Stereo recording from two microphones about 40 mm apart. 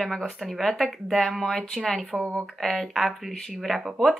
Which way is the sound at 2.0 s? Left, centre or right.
Centre.